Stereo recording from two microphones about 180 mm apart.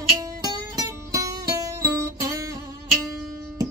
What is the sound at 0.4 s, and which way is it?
Music, 20° right (ahead or behind).